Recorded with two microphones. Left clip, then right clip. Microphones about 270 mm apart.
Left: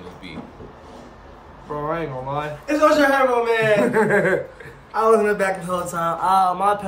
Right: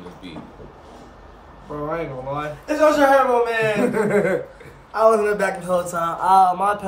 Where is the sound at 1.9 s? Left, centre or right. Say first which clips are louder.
Even; centre.